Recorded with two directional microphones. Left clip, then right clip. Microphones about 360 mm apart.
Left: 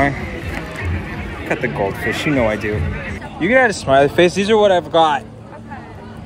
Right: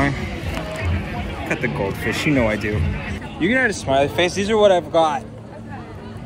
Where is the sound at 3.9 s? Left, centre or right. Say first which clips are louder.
Left 6 dB; centre.